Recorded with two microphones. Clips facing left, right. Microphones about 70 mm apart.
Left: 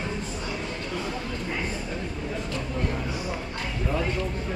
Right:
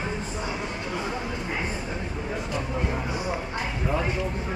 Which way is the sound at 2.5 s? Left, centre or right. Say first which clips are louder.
Right 2 dB; centre.